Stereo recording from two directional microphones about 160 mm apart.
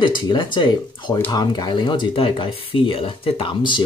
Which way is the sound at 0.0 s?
30° left (ahead or behind).